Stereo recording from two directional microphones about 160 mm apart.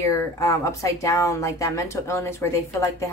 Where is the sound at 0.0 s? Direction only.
20° left (ahead or behind).